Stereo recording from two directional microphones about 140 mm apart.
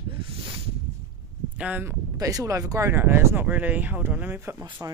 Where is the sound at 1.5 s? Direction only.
10° right (ahead or behind).